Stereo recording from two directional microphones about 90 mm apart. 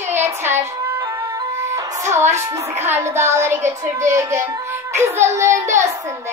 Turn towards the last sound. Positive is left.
turn(degrees=-30)  # may be behind; listen again after turning